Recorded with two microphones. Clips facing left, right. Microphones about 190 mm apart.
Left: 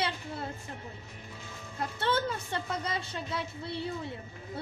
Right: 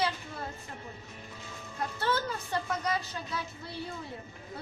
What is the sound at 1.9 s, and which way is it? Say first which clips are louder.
Speech: left 2 dB; 25° left (ahead or behind).